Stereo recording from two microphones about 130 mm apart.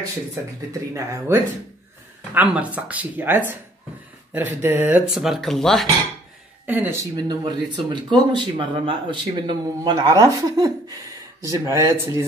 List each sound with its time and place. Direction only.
0.9 s speech: 20° right (ahead or behind); by 5.9 s 5° left (ahead or behind)
6.6 s speech: 15° right (ahead or behind)
7.2 s speech: 35° right (ahead or behind)